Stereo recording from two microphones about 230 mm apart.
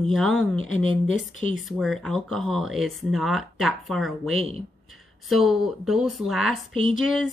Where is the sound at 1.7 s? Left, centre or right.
Centre.